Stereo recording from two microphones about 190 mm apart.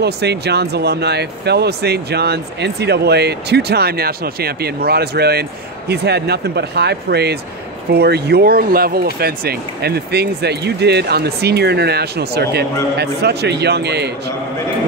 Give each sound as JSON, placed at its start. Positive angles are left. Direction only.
{"t": 0.0, "sound": "speech", "side_deg": -60}